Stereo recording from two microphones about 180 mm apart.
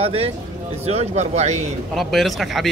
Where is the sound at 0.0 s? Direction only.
35° right (ahead or behind).